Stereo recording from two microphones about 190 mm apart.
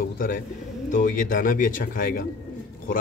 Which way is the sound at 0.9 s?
45° left (ahead or behind).